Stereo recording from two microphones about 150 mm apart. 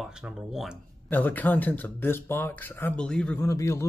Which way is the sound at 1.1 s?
10° left (ahead or behind).